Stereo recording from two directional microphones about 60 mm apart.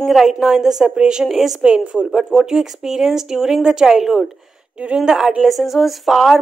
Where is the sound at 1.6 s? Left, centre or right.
Centre.